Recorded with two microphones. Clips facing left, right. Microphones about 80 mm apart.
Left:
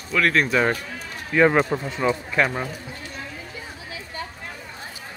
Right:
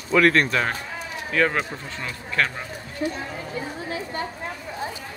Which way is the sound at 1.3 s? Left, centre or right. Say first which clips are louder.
Left 5 dB; centre.